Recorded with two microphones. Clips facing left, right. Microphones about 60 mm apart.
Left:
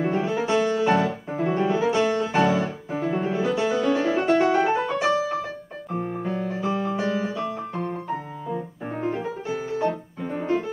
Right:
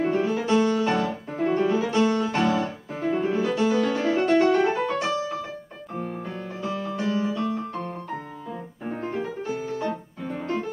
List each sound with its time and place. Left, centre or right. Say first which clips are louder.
0.0 s music: even; centre
5.9 s music: left 3 dB; centre
6.2 s music: left 5 dB; centre
6.7 s music: left 3 dB; left
7.0 s music: even; centre